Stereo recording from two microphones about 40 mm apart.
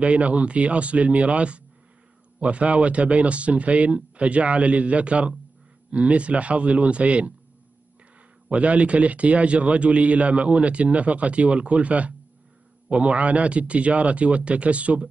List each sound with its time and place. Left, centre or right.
0.0 s a man's voice: right
8.5 s a man's voice: right